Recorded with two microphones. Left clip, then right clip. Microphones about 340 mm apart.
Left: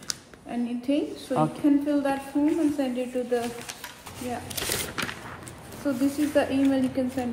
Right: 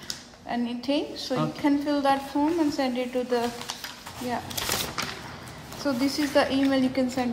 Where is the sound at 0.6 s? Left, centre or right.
Right.